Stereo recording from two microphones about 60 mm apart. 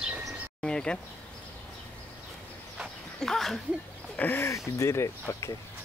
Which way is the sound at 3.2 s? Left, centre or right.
Centre.